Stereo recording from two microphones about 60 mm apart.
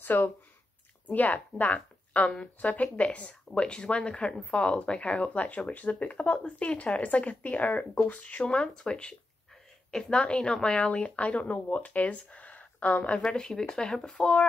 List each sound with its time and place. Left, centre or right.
0.0 s a woman's voice: left
13.2 s speech: centre